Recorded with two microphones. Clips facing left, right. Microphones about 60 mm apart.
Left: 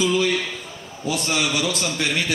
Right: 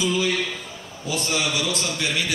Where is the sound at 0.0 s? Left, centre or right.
Left.